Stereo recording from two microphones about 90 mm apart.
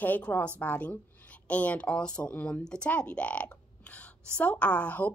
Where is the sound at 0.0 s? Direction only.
20° left (ahead or behind).